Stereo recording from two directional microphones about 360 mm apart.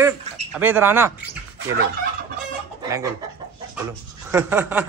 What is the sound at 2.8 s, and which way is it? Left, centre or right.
Speech, centre.